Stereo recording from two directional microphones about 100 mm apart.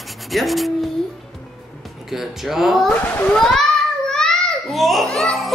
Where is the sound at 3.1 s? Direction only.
15° left (ahead or behind).